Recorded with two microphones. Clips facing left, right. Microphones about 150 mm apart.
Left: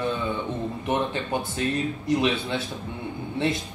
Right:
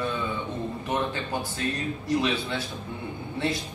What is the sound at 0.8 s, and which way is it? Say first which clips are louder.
Speech: left 3 dB; 25° left (ahead or behind).